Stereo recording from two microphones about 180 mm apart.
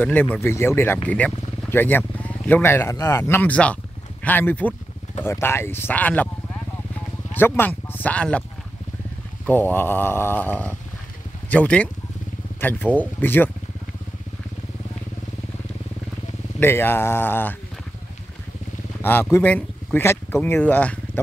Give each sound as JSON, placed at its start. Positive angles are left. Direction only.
{"t": 0.0, "sound": "speech", "side_deg": 10}
{"t": 7.3, "sound": "speech", "side_deg": 10}
{"t": 9.5, "sound": "speech", "side_deg": 10}
{"t": 16.5, "sound": "speech", "side_deg": 10}
{"t": 18.9, "sound": "vehicle", "side_deg": 10}
{"t": 19.3, "sound": "speech", "side_deg": 10}